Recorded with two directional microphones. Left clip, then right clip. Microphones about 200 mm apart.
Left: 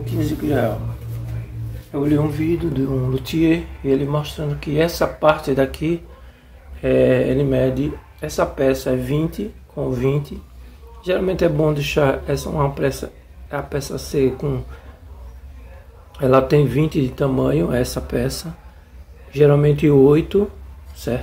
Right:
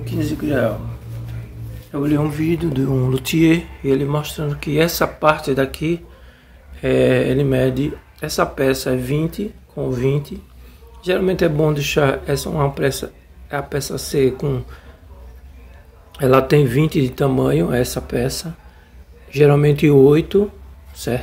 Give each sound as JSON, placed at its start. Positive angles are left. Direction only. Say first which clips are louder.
{"t": 0.0, "sound": "speech", "louder": "even", "side_deg": -15}
{"t": 1.9, "sound": "speech", "louder": "even", "side_deg": -15}
{"t": 16.1, "sound": "speech", "louder": "right 1 dB", "side_deg": -20}
{"t": 19.3, "sound": "speech", "louder": "right 1 dB", "side_deg": -20}